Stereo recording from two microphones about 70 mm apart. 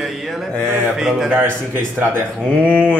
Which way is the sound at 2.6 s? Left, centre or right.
Left.